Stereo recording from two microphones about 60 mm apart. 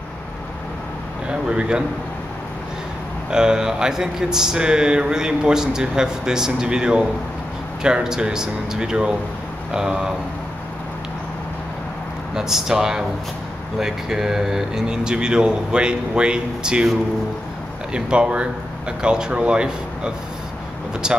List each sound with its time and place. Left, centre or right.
1.5 s speech: centre
3.3 s speech: centre
12.4 s speech: centre
17.9 s speech: centre